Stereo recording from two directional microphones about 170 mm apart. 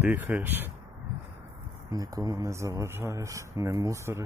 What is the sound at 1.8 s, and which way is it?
Speech, 20° right (ahead or behind).